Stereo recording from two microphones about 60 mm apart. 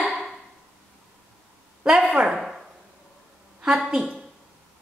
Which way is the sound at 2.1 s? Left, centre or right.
Centre.